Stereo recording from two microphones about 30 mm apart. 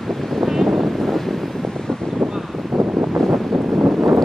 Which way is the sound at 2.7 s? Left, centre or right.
Centre.